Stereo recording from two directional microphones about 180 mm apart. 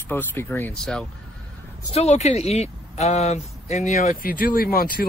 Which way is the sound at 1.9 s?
40° left (ahead or behind).